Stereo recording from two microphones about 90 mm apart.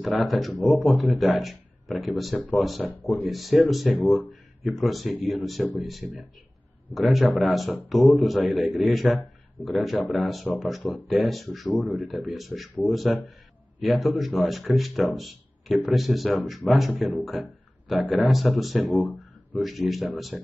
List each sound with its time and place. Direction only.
0.2 s speech: centre (ahead or behind)
13.7 s speech: centre (ahead or behind)